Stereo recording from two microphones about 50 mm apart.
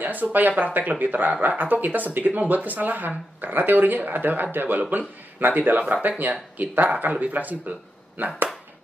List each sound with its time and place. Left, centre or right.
0.0 s speech: right